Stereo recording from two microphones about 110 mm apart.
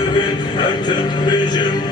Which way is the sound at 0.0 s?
40° left (ahead or behind).